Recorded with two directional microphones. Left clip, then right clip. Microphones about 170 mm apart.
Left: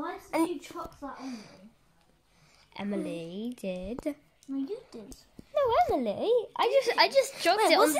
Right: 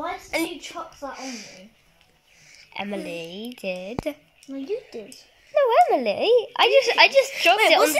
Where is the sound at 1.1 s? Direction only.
60° left (ahead or behind).